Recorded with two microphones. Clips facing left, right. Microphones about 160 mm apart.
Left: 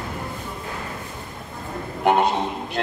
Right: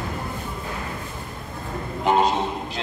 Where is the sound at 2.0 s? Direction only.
60° left (ahead or behind).